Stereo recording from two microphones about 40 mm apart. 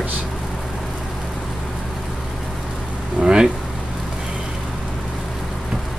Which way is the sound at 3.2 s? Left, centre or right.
Right.